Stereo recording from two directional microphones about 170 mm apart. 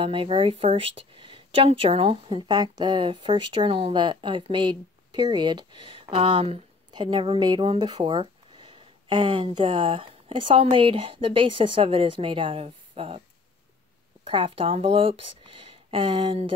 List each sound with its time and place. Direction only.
0.0 s speech: 30° right (ahead or behind)
14.2 s speech: 30° right (ahead or behind)